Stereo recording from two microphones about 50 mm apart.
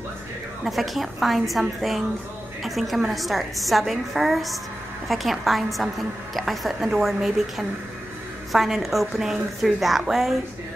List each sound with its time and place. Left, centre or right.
0.7 s a woman's voice: centre